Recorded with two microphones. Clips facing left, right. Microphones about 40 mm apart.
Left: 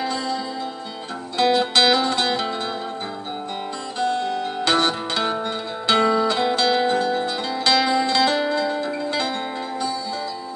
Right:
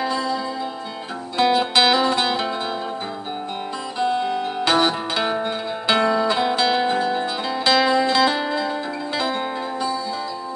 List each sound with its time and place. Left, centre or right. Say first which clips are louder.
0.0 s music: right 2 dB; centre
1.4 s music: right 1 dB; centre
4.0 s music: right 1 dB; centre